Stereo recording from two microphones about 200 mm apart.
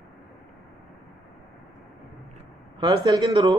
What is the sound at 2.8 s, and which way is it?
Speech, 20° right (ahead or behind).